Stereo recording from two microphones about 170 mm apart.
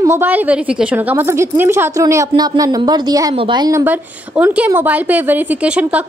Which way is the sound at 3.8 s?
10° right (ahead or behind).